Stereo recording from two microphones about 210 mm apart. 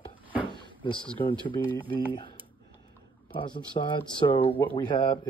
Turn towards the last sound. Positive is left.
turn(degrees=20)  # may be behind; listen again after turning